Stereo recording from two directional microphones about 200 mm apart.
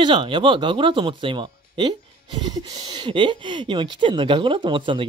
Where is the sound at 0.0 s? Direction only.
25° right (ahead or behind).